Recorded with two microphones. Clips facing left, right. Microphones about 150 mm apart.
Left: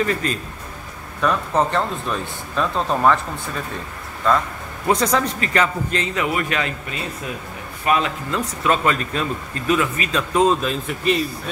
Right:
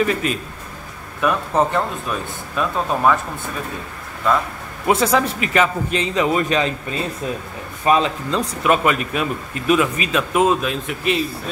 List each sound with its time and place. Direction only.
0.0 s speech: 15° right (ahead or behind)
4.2 s speech: 10° right (ahead or behind); by 8.4 s 25° right (ahead or behind)
8.4 s speech: 15° right (ahead or behind)